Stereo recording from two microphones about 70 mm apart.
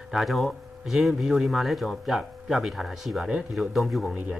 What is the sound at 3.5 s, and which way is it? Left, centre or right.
Speech, centre.